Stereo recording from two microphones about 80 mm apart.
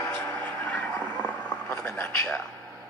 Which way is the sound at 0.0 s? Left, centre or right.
Left.